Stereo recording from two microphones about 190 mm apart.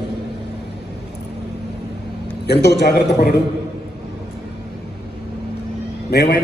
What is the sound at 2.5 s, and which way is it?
Speech, 60° left (ahead or behind).